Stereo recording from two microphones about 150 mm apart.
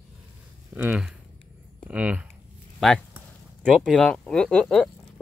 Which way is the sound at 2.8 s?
Centre (ahead or behind).